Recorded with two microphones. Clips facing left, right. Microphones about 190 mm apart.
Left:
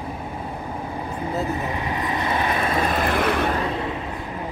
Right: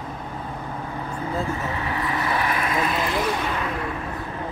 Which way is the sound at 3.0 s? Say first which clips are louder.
Left 3 dB; 60° left (ahead or behind).